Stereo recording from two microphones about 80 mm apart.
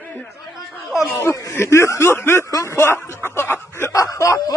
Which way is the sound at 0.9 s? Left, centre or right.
Left.